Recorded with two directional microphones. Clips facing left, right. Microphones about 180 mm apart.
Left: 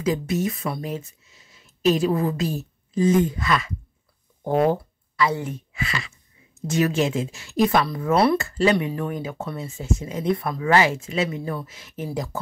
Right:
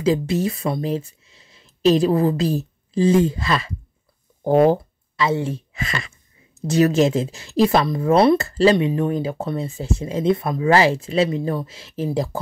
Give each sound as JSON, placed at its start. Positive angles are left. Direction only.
{"t": 0.0, "sound": "speech", "side_deg": -30}
{"t": 8.7, "sound": "speech", "side_deg": -25}